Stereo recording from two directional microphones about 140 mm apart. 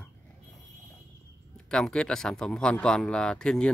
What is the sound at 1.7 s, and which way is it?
Speech, 5° left (ahead or behind).